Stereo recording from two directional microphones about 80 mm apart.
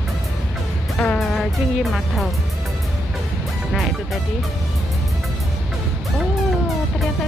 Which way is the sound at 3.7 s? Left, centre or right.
Centre.